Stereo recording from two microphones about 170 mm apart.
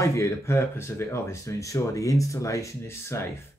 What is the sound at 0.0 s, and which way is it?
Speech, 15° left (ahead or behind).